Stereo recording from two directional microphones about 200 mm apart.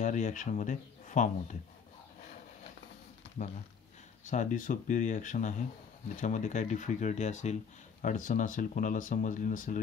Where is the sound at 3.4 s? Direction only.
35° left (ahead or behind).